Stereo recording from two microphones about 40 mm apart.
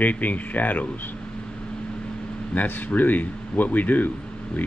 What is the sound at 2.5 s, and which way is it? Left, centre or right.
Speech, left.